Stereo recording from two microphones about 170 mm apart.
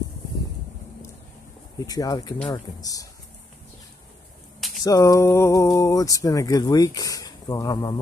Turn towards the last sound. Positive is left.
turn(degrees=25)  # may be behind; listen again after turning